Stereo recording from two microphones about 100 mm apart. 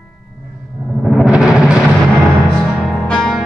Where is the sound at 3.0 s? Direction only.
5° left (ahead or behind).